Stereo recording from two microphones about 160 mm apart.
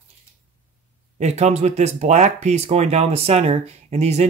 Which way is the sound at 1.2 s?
45° right (ahead or behind).